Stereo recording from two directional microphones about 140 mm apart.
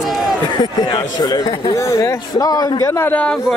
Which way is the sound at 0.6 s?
30° left (ahead or behind).